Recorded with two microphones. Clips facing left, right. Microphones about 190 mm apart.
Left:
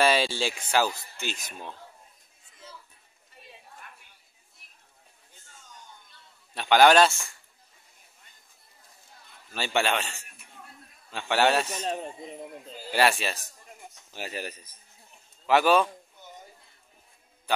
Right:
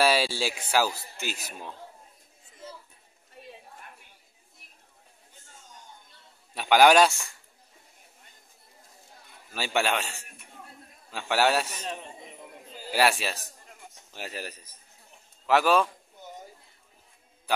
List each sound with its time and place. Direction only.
0.0 s a man's voice: 5° right (ahead or behind)
6.5 s a man's voice: 10° right (ahead or behind)
9.5 s a man's voice: 5° right (ahead or behind)
11.8 s speech: 35° left (ahead or behind)
12.9 s a man's voice: 5° right (ahead or behind)